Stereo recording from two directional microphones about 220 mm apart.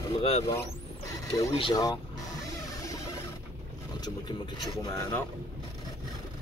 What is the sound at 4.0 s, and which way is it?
Speech, 20° left (ahead or behind).